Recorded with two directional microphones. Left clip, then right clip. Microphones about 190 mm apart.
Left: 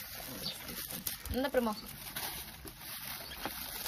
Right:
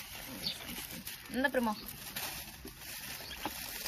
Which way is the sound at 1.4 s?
35° left (ahead or behind).